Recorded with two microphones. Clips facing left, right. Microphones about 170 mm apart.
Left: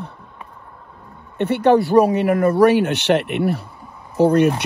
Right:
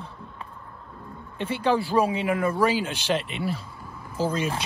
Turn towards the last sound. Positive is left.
turn(degrees=65)  # may be behind; listen again after turning